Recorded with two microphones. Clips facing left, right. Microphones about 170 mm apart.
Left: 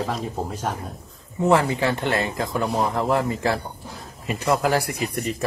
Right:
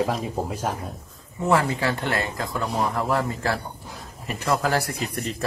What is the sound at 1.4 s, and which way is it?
Speech, 20° left (ahead or behind).